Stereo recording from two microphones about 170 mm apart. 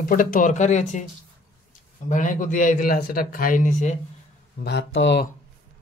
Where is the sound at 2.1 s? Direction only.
50° left (ahead or behind).